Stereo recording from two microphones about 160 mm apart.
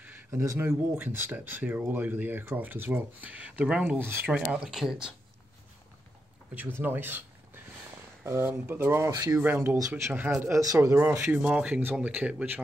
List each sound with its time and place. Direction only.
0.0 s speech: 15° right (ahead or behind)
4.4 s speech: 5° right (ahead or behind)
6.5 s speech: 10° right (ahead or behind)
9.4 s speech: 15° right (ahead or behind)